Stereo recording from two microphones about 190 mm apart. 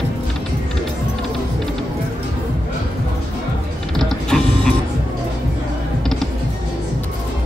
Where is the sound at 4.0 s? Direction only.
Centre (ahead or behind).